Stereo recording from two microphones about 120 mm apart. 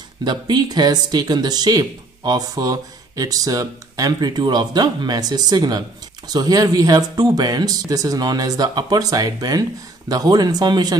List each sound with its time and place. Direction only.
0.2 s speech: 35° right (ahead or behind)